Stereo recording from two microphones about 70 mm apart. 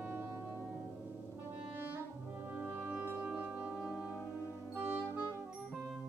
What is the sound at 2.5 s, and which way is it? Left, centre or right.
Music, right.